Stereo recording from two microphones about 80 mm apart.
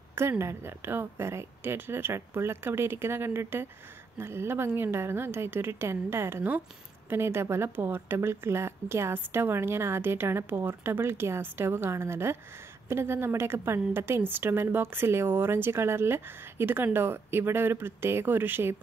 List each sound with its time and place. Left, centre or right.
0.1 s a woman's voice: right